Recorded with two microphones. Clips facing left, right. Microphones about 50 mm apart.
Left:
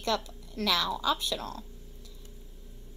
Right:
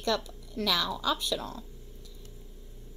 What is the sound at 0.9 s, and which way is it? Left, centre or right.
Speech, centre.